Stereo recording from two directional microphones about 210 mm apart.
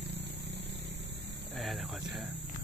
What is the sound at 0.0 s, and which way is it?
Vehicle, 55° right (ahead or behind).